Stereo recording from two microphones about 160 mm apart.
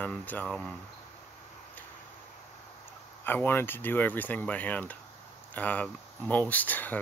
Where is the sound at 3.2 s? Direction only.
15° left (ahead or behind).